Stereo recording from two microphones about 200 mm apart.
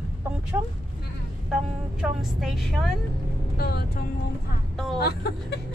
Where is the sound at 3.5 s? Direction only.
50° left (ahead or behind).